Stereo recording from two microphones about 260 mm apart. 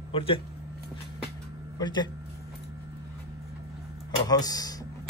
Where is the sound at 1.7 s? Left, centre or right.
Centre.